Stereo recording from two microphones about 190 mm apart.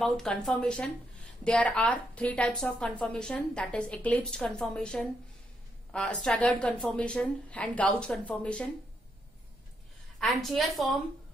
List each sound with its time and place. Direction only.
0.0 s a woman's voice: centre (ahead or behind)
10.2 s a woman's voice: centre (ahead or behind)